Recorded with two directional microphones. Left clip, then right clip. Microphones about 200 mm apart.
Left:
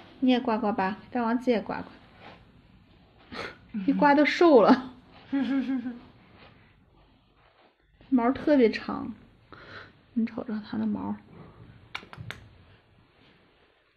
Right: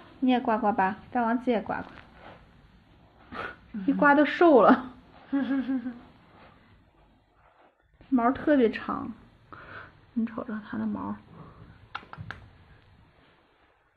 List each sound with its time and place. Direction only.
0.2 s a woman's voice: 20° left (ahead or behind)
3.3 s a woman's voice: 20° left (ahead or behind)
8.1 s speech: 20° left (ahead or behind)
11.9 s a sound: 25° left (ahead or behind)